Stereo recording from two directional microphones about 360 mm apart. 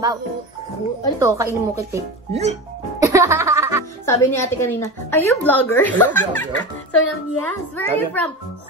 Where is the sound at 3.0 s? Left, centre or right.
Centre.